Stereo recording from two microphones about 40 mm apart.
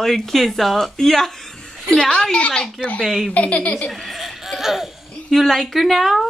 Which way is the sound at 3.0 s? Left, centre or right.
Centre.